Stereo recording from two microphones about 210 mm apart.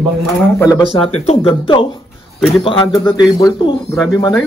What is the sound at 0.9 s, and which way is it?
Speech, 30° left (ahead or behind).